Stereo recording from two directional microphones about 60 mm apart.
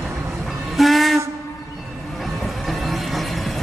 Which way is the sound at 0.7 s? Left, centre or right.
Centre.